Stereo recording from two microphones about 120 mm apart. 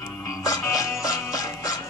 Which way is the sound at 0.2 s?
30° left (ahead or behind).